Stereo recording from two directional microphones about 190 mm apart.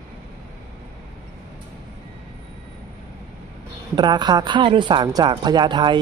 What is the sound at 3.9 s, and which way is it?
A woman's voice, 20° right (ahead or behind).